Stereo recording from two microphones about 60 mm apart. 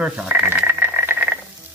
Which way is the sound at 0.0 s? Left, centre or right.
Centre.